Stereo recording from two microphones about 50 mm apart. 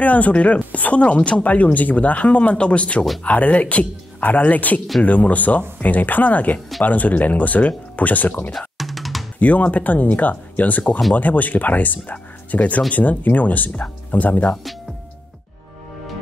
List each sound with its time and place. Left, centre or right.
0.0 s speech: left
8.5 s drum: centre
9.4 s speech: left